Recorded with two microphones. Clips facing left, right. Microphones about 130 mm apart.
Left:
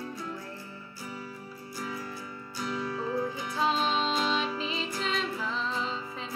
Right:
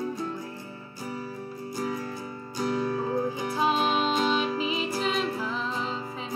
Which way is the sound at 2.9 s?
45° right (ahead or behind).